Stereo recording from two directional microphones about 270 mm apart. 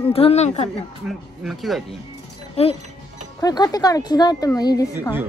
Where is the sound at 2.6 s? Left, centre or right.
Left.